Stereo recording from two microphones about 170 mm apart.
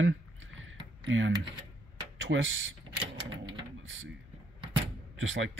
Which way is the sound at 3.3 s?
25° right (ahead or behind).